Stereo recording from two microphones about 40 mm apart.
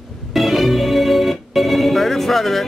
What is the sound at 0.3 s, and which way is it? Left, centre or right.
Organ, centre.